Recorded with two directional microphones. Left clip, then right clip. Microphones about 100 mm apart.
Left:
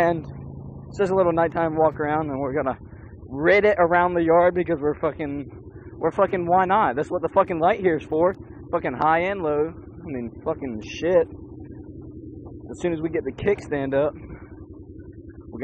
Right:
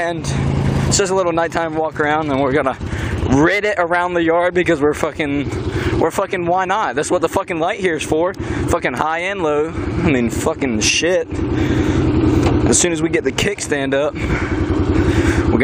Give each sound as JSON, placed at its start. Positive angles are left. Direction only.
{"t": 0.9, "sound": "speech", "side_deg": -15}
{"t": 12.6, "sound": "speech", "side_deg": -15}